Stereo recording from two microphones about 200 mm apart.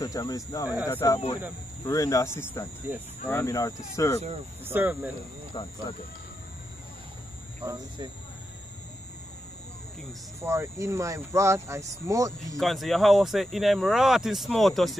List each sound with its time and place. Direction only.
0.0 s speech: 15° left (ahead or behind)
2.9 s speech: 10° right (ahead or behind)
3.3 s speech: 15° left (ahead or behind)
4.6 s speech: 10° right (ahead or behind)
5.5 s speech: 20° left (ahead or behind)
7.6 s speech: 20° right (ahead or behind)
10.4 s speech: 15° right (ahead or behind)
12.5 s speech: centre (ahead or behind)